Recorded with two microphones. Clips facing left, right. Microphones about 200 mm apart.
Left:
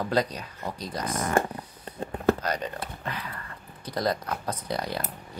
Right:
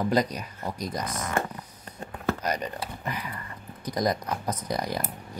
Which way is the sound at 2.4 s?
10° right (ahead or behind).